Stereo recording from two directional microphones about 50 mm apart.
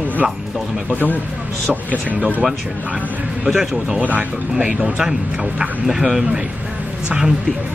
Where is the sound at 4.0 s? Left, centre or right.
Right.